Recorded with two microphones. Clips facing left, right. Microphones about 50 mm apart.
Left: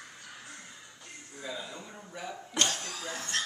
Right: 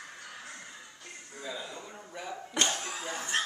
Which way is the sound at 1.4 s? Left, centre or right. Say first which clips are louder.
Even; centre.